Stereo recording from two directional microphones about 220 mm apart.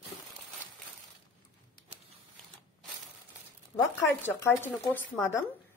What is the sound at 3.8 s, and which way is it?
Speech, 10° left (ahead or behind).